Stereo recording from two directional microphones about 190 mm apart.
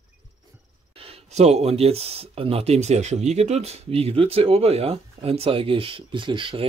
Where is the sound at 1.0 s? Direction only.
30° right (ahead or behind).